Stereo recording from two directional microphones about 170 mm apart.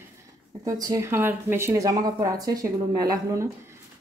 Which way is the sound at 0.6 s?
20° right (ahead or behind).